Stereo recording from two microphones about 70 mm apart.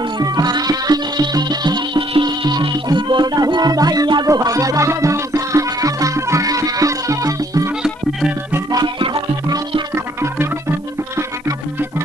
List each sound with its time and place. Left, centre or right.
0.2 s music: right
4.4 s music: right
5.3 s music: right
8.7 s music: right